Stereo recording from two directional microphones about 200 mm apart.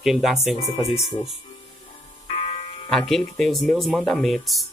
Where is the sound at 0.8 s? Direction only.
30° left (ahead or behind).